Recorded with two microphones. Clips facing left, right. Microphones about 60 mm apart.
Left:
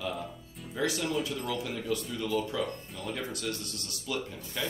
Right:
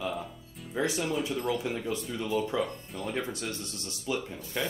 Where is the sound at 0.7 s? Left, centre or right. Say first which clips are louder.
Right 1 dB; right.